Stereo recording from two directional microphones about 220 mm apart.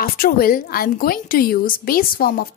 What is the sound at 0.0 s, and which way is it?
A woman's voice, 40° left (ahead or behind).